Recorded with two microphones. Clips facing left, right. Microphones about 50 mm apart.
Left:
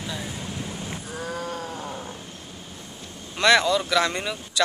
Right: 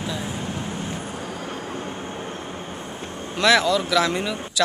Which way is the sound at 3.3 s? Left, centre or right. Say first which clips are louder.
Right 1 dB; centre.